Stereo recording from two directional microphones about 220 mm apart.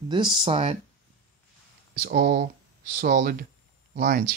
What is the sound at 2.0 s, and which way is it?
Speech, 35° right (ahead or behind).